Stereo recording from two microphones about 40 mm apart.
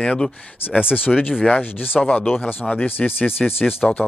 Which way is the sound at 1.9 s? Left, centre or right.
Left.